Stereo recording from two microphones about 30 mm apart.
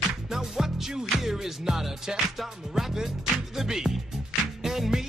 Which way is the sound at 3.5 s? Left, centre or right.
Centre.